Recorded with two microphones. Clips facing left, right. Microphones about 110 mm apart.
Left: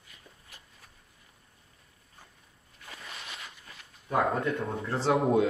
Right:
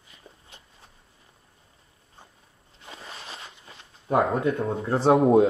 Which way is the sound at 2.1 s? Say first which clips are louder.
Right 4 dB; 25° right (ahead or behind).